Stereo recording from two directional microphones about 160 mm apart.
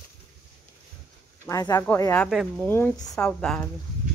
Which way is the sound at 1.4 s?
15° left (ahead or behind).